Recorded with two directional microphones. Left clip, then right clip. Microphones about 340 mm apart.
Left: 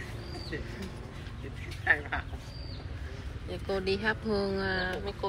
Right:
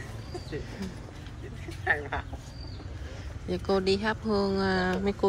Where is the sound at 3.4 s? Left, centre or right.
Centre.